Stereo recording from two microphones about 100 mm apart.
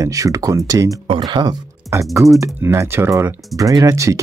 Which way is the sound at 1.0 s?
50° right (ahead or behind).